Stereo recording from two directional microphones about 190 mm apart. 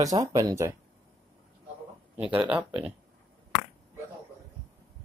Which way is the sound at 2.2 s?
5° right (ahead or behind).